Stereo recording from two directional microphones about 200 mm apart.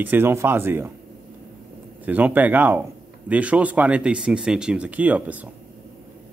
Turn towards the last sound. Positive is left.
turn(degrees=-5)  # may be behind; listen again after turning